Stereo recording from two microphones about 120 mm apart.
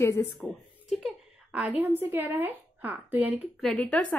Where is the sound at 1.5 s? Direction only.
10° right (ahead or behind).